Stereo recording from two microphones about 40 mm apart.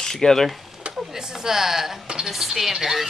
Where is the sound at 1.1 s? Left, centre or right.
Centre.